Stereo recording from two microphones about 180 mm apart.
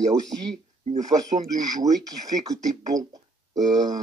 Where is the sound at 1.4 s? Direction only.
20° right (ahead or behind).